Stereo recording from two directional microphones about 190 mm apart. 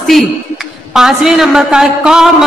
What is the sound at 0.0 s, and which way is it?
A woman's voice, centre (ahead or behind).